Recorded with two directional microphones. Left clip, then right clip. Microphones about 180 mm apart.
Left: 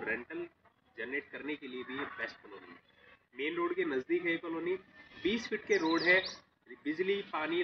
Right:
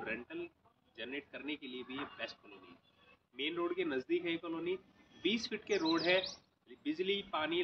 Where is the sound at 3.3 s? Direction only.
20° right (ahead or behind).